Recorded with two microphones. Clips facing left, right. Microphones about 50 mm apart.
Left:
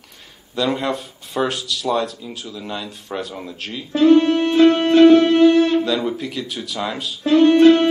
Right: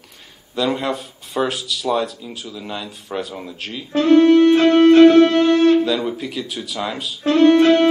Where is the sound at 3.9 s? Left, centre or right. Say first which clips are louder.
Right 2 dB; right.